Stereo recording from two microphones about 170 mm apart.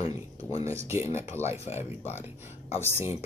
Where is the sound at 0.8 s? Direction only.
15° right (ahead or behind).